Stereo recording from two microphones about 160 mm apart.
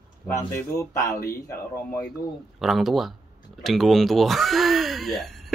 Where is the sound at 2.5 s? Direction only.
Centre (ahead or behind).